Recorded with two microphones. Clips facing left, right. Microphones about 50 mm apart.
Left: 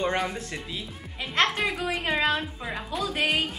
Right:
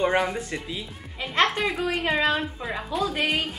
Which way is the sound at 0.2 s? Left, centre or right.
Centre.